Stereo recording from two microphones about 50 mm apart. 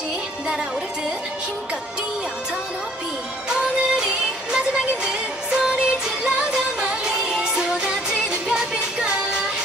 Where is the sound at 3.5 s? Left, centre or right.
Centre.